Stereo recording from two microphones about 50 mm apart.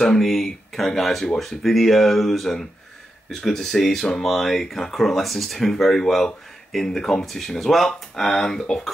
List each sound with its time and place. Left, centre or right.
0.0 s speech: centre